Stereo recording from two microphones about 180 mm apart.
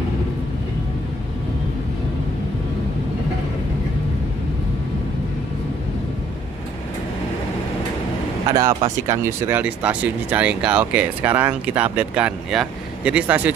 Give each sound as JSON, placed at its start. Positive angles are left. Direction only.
{"t": 8.5, "sound": "speech", "side_deg": -20}